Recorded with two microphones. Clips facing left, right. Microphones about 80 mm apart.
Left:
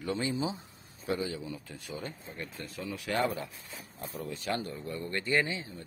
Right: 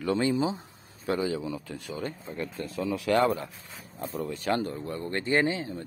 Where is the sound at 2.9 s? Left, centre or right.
Right.